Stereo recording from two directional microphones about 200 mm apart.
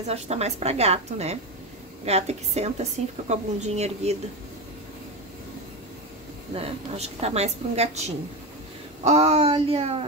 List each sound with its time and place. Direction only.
0.0 s a woman's voice: 30° right (ahead or behind)
6.5 s a woman's voice: 30° right (ahead or behind)